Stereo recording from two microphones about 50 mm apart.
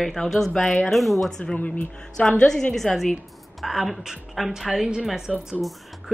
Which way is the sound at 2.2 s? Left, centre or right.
Left.